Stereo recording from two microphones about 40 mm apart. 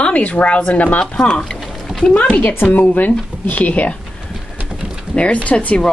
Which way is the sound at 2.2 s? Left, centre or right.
Left.